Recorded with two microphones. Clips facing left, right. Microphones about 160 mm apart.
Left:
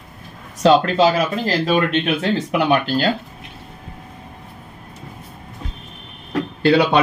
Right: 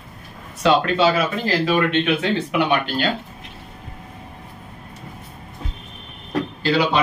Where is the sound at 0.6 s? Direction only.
35° left (ahead or behind).